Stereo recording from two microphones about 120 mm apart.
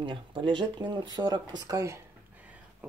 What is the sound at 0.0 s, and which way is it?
Speech, 40° right (ahead or behind).